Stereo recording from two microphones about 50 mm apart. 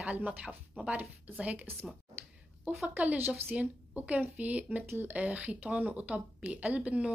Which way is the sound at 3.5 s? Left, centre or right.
Right.